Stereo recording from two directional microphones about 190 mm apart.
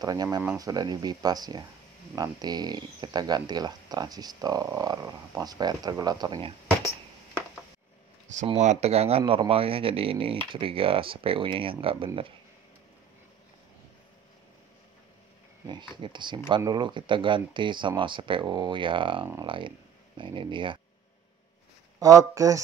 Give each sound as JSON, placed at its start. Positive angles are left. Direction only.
{"t": 0.0, "sound": "speech", "side_deg": -20}
{"t": 8.5, "sound": "speech", "side_deg": -35}
{"t": 16.0, "sound": "speech", "side_deg": -25}
{"t": 22.0, "sound": "speech", "side_deg": -15}